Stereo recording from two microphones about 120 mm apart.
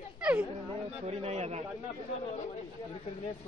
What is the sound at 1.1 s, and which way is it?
Speech, 60° right (ahead or behind).